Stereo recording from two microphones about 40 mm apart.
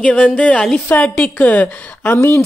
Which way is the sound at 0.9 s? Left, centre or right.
Left.